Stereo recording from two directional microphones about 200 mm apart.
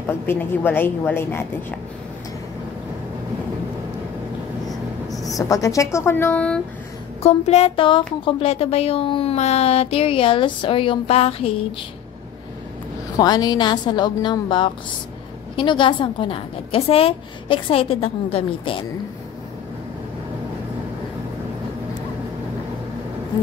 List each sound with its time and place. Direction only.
0.1 s a woman's voice: 10° left (ahead or behind)
4.6 s vehicle: centre (ahead or behind)
5.5 s a woman's voice: 15° left (ahead or behind)
7.2 s speech: 30° left (ahead or behind)
13.2 s speech: 20° left (ahead or behind)